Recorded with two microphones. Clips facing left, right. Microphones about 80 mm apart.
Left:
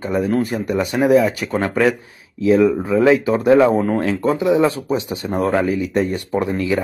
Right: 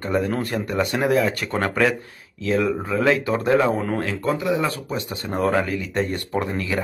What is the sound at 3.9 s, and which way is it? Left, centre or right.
Speech, left.